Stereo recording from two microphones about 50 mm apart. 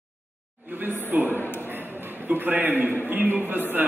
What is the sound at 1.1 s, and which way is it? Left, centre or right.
Speech, right.